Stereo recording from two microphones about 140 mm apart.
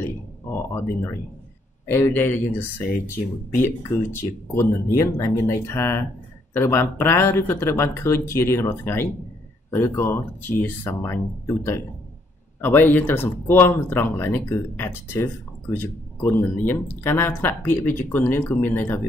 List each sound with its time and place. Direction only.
0.0 s speech: 15° left (ahead or behind)